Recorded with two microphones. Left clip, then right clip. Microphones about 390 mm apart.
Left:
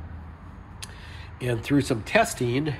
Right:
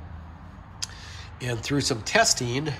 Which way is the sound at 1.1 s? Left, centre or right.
Centre.